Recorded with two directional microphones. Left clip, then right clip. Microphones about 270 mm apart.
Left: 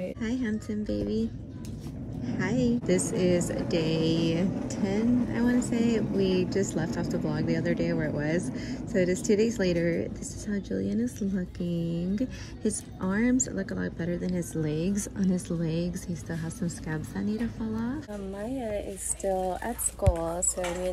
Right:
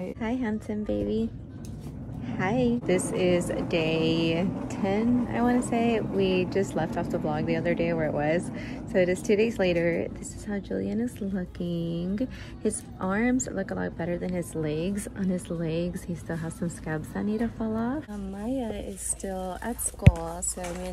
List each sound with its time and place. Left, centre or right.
0.4 s speech: centre
2.2 s a woman's voice: centre
18.4 s speech: centre